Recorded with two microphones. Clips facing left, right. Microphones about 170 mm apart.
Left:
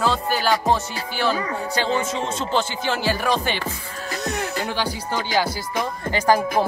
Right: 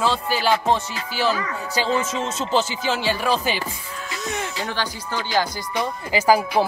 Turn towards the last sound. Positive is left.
turn(degrees=-10)  # may be behind; listen again after turning